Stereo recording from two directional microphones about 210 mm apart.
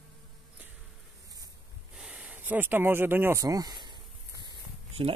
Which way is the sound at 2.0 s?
5° right (ahead or behind).